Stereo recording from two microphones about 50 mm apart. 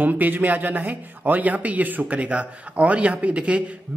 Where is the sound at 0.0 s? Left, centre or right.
Right.